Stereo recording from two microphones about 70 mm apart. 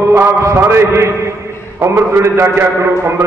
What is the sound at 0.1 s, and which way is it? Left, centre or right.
A man's voice, right.